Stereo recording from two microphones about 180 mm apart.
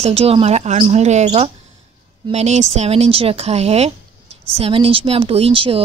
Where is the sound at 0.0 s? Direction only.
35° right (ahead or behind).